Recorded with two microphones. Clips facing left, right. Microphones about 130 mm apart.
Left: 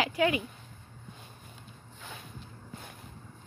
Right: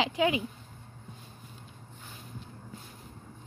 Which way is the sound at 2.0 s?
70° left (ahead or behind).